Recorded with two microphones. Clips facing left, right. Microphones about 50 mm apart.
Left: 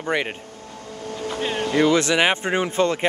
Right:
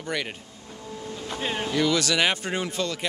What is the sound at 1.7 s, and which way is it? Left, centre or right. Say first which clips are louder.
Speech: left 6 dB; left.